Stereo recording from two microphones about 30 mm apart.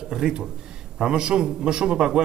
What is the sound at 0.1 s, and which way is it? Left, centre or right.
A man's voice, right.